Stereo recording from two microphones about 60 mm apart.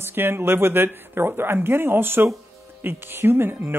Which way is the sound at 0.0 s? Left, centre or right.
Right.